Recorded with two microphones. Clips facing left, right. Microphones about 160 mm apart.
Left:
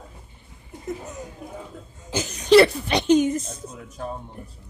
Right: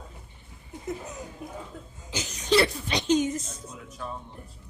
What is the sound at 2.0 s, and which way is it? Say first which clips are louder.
A woman's voice: left 8 dB; 50° left (ahead or behind).